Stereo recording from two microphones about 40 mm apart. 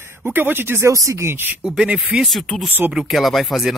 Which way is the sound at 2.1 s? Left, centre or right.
Right.